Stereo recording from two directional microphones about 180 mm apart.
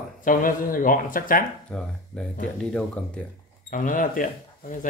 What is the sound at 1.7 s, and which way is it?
Speech, centre (ahead or behind).